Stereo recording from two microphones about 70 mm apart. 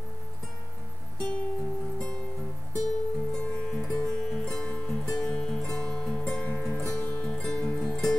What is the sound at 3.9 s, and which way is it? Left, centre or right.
Music, centre.